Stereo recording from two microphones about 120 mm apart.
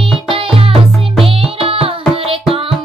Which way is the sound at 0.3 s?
50° right (ahead or behind).